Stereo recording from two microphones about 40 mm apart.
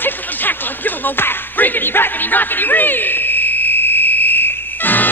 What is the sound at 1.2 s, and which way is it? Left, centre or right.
Music, left.